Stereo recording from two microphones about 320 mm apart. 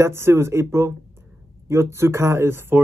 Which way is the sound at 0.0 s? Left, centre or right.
Centre.